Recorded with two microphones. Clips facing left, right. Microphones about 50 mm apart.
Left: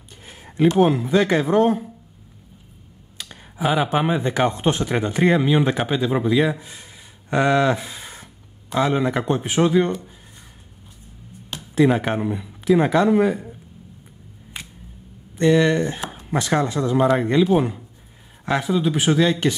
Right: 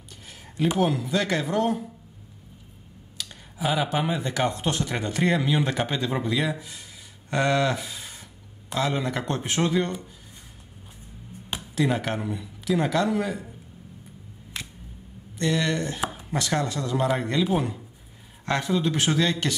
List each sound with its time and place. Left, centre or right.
0.7 s speech: left
3.2 s speech: left; by 6.4 s centre
6.4 s speech: left
7.2 s speech: centre
11.7 s speech: left
14.5 s a sound: centre
15.3 s speech: left
18.4 s speech: centre